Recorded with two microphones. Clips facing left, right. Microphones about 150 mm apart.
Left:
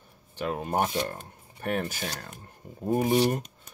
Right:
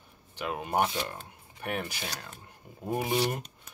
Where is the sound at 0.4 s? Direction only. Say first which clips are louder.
Left 1 dB; 35° left (ahead or behind).